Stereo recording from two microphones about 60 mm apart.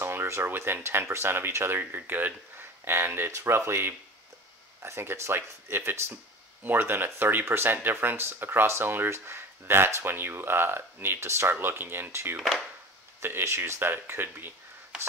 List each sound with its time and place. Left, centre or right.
0.0 s speech: right